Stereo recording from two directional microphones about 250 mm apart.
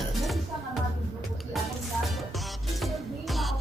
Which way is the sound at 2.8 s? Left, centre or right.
Centre.